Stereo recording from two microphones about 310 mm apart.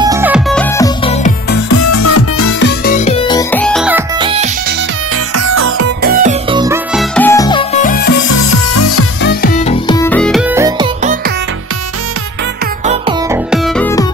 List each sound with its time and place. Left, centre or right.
0.0 s music: centre
1.7 s music: left
2.8 s music: left; by 4.0 s centre
4.2 s music: centre
5.3 s music: right
6.0 s music: right
6.5 s music: centre; by 8.1 s left
8.2 s music: left
9.4 s music: left; by 10.9 s centre
11.0 s music: right
12.8 s music: centre
13.3 s music: centre